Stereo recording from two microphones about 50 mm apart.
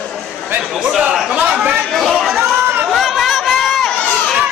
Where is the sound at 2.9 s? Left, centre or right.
Centre.